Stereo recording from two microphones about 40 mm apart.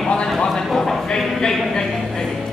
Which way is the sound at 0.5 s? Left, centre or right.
Centre.